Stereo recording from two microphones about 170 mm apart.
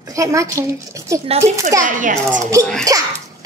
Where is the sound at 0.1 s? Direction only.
20° right (ahead or behind).